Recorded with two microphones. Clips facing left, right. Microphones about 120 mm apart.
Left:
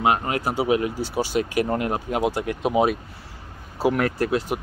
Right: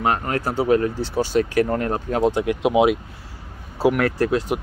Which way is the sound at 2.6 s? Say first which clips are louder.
Right 3 dB; 15° right (ahead or behind).